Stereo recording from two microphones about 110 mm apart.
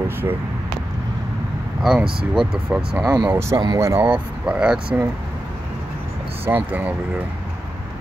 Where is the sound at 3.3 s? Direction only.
25° right (ahead or behind).